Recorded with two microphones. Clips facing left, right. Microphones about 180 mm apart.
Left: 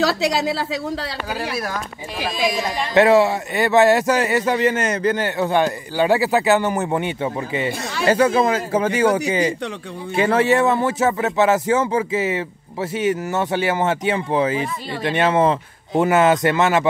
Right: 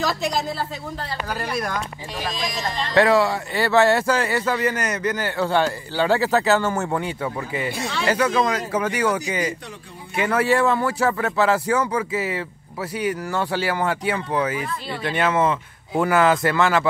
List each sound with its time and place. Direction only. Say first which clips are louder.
0.0 s a woman's voice: left 5 dB; 85° left
1.5 s speech: even; 5° left (ahead or behind)
2.9 s speech: left 3 dB; 20° left (ahead or behind)